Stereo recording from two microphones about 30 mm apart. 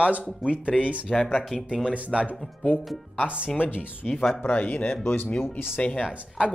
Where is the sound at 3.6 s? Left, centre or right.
Left.